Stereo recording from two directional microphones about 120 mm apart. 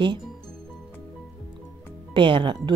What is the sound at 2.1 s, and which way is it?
Speech, 45° right (ahead or behind).